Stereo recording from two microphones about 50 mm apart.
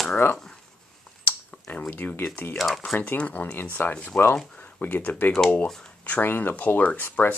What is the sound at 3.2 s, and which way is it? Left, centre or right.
Speech, left.